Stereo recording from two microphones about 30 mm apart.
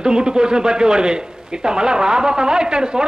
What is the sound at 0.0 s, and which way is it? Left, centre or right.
A man's voice, right.